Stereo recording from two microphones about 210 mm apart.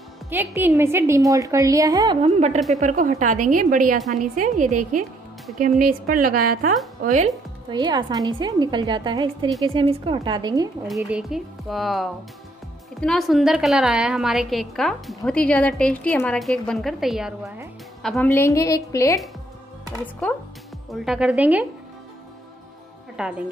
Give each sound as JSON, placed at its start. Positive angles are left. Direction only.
{"t": 0.3, "sound": "a woman's voice", "side_deg": -10}
{"t": 2.2, "sound": "a woman's voice", "side_deg": -30}
{"t": 6.3, "sound": "speech", "side_deg": -90}
{"t": 7.1, "sound": "a woman's voice", "side_deg": -35}
{"t": 7.7, "sound": "a woman's voice", "side_deg": -20}
{"t": 11.0, "sound": "a woman's voice", "side_deg": -5}
{"t": 18.3, "sound": "a woman's voice", "side_deg": 15}
{"t": 20.9, "sound": "a woman's voice", "side_deg": 0}
{"t": 23.2, "sound": "a woman's voice", "side_deg": -5}